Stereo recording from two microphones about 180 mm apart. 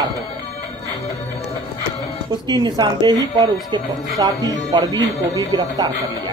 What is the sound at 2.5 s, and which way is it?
A woman's voice, 25° right (ahead or behind).